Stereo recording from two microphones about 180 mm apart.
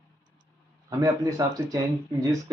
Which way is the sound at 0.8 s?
20° right (ahead or behind).